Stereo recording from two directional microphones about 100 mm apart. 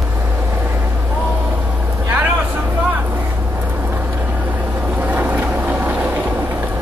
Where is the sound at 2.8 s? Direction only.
20° right (ahead or behind).